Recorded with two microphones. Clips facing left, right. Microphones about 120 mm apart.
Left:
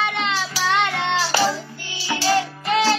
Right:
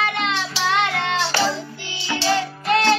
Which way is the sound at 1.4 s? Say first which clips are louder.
Left 1 dB; 25° right (ahead or behind).